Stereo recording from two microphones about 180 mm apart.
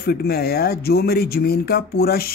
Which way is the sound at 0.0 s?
60° left (ahead or behind).